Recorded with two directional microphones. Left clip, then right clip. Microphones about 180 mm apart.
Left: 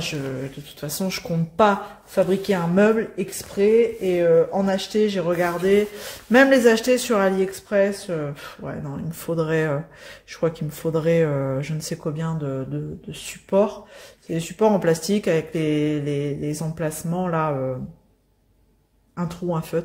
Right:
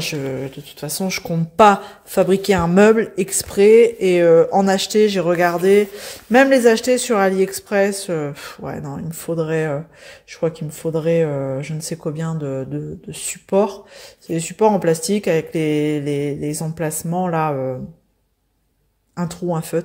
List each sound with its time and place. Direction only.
0.0 s speech: 40° right (ahead or behind)
9.1 s speech: 15° right (ahead or behind)
19.1 s speech: 25° right (ahead or behind)